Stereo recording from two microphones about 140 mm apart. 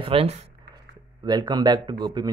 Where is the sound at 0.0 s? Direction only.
45° right (ahead or behind).